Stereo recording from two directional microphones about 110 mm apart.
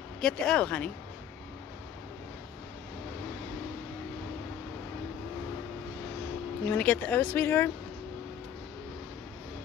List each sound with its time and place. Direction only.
0.2 s speech: 5° left (ahead or behind)
6.6 s speech: 15° left (ahead or behind)